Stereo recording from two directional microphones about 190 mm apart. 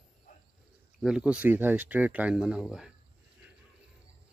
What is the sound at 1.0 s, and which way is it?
Speech, 5° right (ahead or behind).